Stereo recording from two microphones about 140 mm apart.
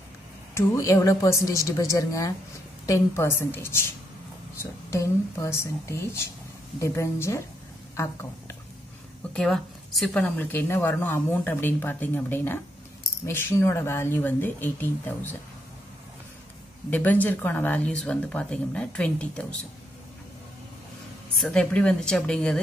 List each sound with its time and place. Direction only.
0.6 s a woman's voice: 20° left (ahead or behind)
9.3 s a woman's voice: centre (ahead or behind)
10.2 s speech: 15° left (ahead or behind)
16.9 s speech: 10° left (ahead or behind)
21.4 s speech: 5° left (ahead or behind)